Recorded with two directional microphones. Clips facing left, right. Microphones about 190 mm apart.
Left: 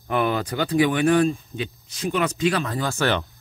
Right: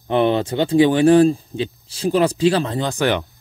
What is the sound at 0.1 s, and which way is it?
Speech, 25° right (ahead or behind).